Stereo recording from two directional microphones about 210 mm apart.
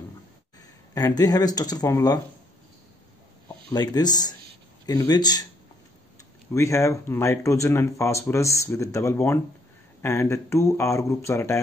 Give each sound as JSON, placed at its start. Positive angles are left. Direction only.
{"t": 0.9, "sound": "speech", "side_deg": 15}
{"t": 3.7, "sound": "speech", "side_deg": 20}
{"t": 6.5, "sound": "speech", "side_deg": 15}